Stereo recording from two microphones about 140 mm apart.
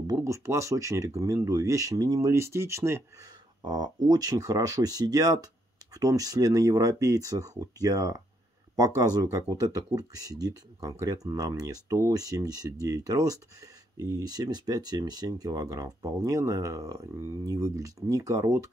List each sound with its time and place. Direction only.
0.0 s speech: 25° right (ahead or behind)
3.6 s speech: 30° right (ahead or behind)